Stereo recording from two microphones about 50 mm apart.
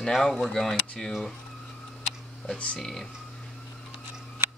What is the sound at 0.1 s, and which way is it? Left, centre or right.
Speech, centre.